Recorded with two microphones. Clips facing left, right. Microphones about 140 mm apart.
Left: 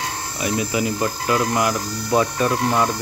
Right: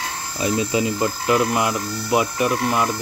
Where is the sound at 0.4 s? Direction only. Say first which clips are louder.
Right 2 dB; 25° right (ahead or behind).